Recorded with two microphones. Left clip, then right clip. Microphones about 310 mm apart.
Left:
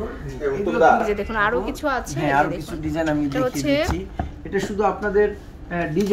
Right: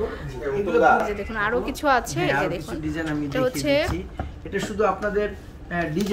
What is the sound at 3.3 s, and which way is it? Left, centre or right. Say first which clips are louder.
Speech: right 3 dB; centre.